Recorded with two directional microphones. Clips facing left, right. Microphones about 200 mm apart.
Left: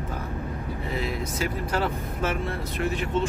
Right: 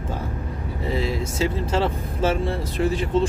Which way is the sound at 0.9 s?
30° right (ahead or behind).